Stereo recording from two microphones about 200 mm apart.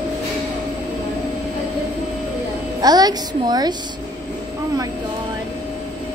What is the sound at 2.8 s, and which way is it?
Speech, 20° right (ahead or behind).